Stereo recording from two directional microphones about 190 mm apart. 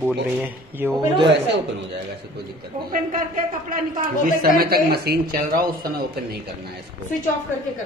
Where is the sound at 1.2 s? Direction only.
65° right (ahead or behind).